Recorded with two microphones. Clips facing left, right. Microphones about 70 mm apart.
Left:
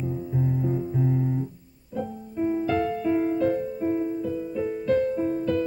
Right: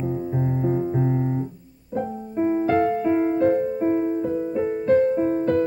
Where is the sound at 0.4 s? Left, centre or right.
Right.